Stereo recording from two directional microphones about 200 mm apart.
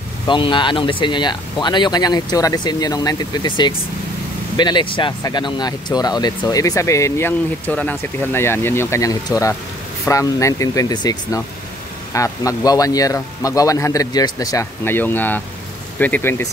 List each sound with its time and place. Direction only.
0.3 s speech: 25° left (ahead or behind)